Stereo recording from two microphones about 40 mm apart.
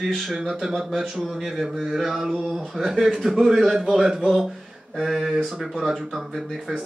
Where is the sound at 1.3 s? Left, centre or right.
Centre.